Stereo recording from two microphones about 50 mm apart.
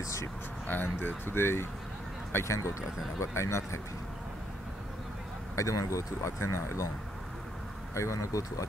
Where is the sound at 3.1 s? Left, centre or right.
Left.